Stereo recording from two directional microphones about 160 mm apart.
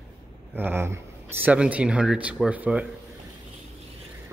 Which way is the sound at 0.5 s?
15° right (ahead or behind).